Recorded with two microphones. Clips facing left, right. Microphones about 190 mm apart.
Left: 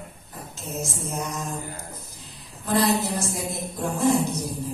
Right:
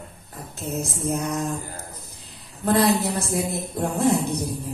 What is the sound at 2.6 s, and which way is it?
Speech, 60° right (ahead or behind).